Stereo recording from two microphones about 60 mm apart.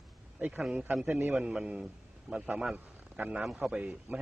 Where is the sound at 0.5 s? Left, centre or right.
Centre.